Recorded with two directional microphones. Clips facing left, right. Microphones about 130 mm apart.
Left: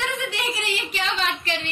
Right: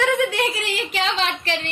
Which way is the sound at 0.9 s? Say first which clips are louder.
Right 4 dB; 85° right.